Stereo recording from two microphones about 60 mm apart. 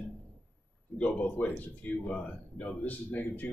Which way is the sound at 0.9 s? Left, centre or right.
Left.